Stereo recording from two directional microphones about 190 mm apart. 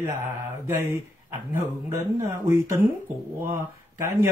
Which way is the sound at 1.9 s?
15° right (ahead or behind).